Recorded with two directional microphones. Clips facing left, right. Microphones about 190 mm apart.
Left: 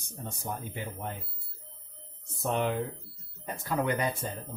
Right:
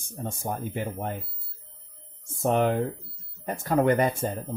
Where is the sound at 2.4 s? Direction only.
50° right (ahead or behind).